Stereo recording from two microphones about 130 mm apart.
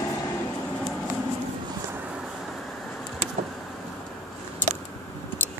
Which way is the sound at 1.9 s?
10° right (ahead or behind).